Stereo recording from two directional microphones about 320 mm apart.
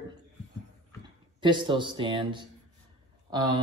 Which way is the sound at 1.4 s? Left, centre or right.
Centre.